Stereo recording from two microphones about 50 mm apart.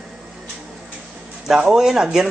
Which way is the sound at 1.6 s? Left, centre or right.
Centre.